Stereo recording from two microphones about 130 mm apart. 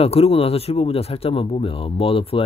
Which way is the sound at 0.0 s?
50° left (ahead or behind).